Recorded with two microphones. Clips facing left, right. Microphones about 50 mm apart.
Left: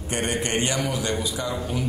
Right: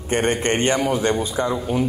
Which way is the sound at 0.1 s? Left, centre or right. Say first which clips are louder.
Right 6 dB; right.